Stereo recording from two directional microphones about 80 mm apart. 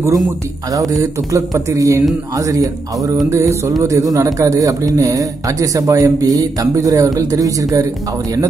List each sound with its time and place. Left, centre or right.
0.7 s a man's voice: right
3.3 s mantra: right
3.8 s a man's voice: right